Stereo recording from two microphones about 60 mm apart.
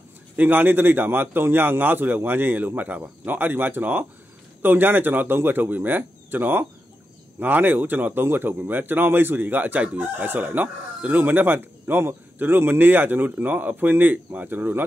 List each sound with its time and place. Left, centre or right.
0.4 s speech: right